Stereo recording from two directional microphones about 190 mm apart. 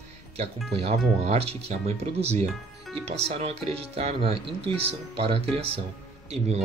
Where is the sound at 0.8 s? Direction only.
30° right (ahead or behind).